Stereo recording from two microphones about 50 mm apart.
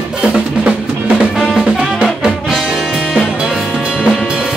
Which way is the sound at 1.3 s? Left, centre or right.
Centre.